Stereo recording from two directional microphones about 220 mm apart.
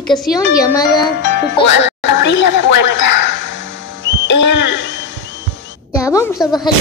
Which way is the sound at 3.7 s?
55° left (ahead or behind).